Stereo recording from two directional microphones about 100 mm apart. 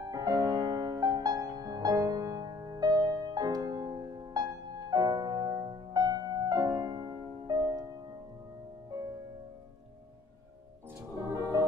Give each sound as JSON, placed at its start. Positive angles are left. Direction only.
{"t": 0.0, "sound": "music", "side_deg": -40}
{"t": 11.3, "sound": "music", "side_deg": -35}